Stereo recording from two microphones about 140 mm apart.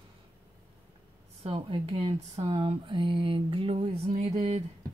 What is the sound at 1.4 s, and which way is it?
Speech, 40° right (ahead or behind).